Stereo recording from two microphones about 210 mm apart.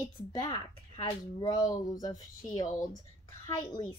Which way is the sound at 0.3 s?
20° left (ahead or behind).